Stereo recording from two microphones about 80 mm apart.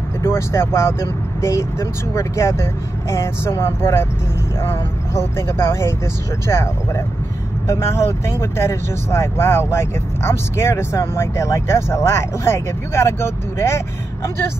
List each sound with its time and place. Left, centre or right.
0.2 s speech: left